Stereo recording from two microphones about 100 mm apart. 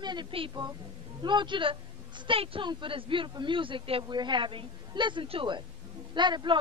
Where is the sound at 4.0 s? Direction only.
50° right (ahead or behind).